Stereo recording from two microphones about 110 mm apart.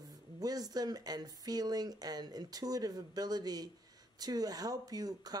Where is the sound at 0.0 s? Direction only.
35° right (ahead or behind).